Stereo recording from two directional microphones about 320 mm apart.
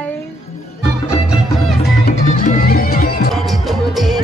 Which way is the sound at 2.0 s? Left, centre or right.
Left.